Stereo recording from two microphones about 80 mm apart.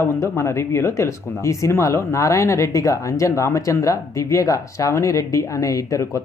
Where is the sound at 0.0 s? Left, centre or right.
Left.